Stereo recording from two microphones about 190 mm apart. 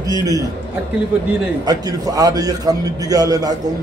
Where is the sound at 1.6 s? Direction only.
20° right (ahead or behind).